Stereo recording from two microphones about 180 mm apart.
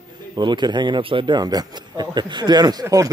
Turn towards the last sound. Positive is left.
turn(degrees=-20)  # may be behind; listen again after turning